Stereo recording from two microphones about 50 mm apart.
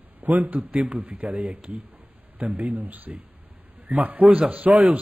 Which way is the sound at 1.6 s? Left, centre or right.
Right.